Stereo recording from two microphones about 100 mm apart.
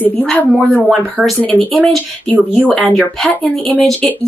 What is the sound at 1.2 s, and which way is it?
Speech, 15° right (ahead or behind).